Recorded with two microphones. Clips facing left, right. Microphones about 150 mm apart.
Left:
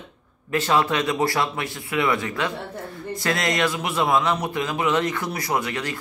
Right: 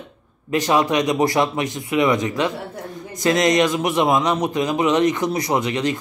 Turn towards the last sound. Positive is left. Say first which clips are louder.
# right 5 dB
turn(degrees=-20)  # may be behind; listen again after turning